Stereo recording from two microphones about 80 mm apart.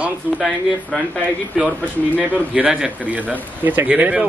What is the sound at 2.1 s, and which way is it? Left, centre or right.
Speech, right.